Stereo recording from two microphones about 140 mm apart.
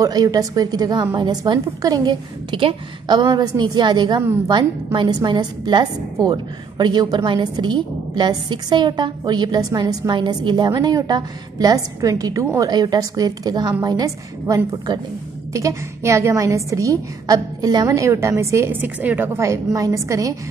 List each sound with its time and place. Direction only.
0.0 s a woman's voice: 25° right (ahead or behind)